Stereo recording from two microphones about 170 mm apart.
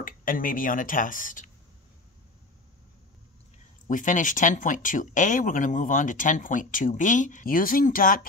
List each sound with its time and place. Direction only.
0.0 s speech: 55° left (ahead or behind)
3.9 s speech: 50° left (ahead or behind)